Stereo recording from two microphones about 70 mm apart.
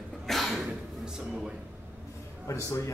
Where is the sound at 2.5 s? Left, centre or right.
Left.